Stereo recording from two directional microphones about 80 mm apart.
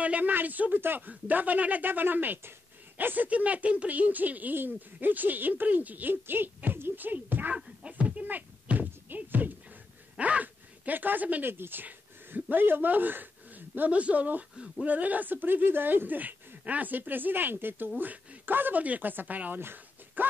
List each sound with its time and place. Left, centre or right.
0.0 s speech: centre